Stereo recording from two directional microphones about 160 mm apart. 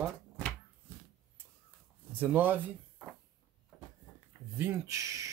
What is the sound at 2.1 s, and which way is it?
Speech, 10° right (ahead or behind).